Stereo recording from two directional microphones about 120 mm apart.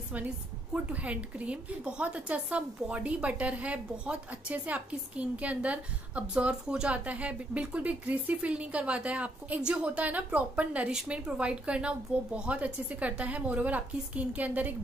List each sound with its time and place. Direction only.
0.9 s a woman's voice: 10° right (ahead or behind)